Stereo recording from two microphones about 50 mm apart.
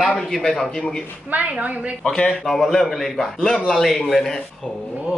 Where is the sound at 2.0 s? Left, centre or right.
Centre.